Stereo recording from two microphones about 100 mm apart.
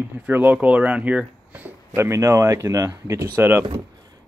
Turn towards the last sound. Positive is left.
turn(degrees=-20)  # may be behind; listen again after turning